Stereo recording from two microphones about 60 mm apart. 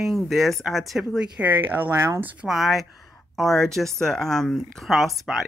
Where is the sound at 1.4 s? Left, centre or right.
Right.